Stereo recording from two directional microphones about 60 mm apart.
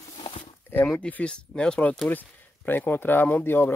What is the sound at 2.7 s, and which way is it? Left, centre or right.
Speech, left.